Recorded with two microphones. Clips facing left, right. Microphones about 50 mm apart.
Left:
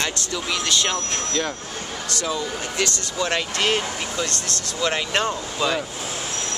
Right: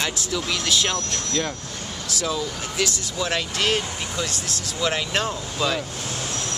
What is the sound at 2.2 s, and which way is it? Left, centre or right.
Speech, centre.